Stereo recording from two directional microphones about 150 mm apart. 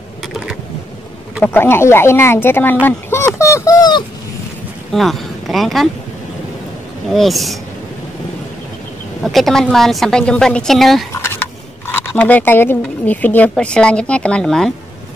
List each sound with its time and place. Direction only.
1.4 s speech: 15° left (ahead or behind)
4.9 s speech: centre (ahead or behind)
7.1 s a woman's voice: centre (ahead or behind)
9.2 s a woman's voice: centre (ahead or behind)
11.1 s a sound: 15° left (ahead or behind)
11.9 s speech: 15° left (ahead or behind)